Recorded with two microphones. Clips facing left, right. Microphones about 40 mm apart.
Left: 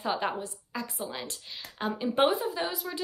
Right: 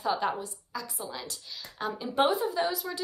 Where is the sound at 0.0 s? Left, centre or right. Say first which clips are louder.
Right 1 dB; left.